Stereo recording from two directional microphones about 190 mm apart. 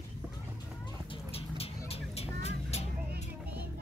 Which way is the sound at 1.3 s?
30° left (ahead or behind).